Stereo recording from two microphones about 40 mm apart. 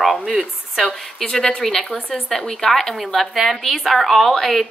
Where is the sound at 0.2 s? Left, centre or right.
Centre.